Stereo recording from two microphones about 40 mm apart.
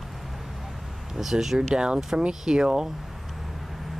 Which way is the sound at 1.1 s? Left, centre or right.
Centre.